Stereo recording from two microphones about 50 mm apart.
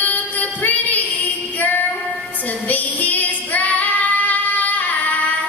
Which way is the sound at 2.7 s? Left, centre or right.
Left.